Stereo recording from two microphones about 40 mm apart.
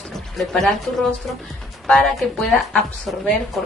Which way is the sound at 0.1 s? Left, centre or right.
Centre.